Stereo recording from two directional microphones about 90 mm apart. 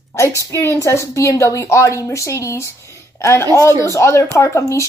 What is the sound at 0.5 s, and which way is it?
A woman's voice, 30° left (ahead or behind).